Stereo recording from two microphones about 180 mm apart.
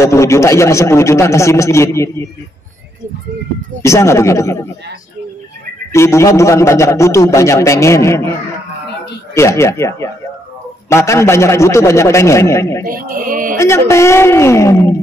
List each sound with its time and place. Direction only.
0.0 s a man's voice: 15° left (ahead or behind)
3.8 s a man's voice: 15° left (ahead or behind)
5.9 s a man's voice: 15° left (ahead or behind)
12.8 s speech: 50° right (ahead or behind)
13.6 s a man's voice: 15° left (ahead or behind)